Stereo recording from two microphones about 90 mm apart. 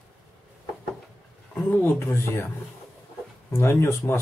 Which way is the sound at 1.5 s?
25° left (ahead or behind).